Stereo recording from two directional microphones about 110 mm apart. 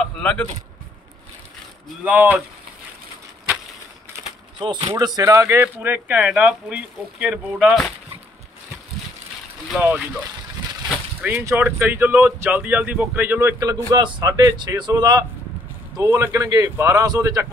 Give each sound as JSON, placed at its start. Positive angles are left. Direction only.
{"t": 0.0, "sound": "a sound", "side_deg": 10}
{"t": 2.0, "sound": "speech", "side_deg": -15}
{"t": 4.1, "sound": "a sound", "side_deg": -25}
{"t": 4.6, "sound": "speech", "side_deg": -45}
{"t": 4.9, "sound": "speech", "side_deg": -35}
{"t": 9.8, "sound": "speech", "side_deg": -10}
{"t": 11.2, "sound": "speech", "side_deg": -20}
{"t": 13.6, "sound": "speech", "side_deg": -35}
{"t": 16.0, "sound": "a man's voice", "side_deg": -25}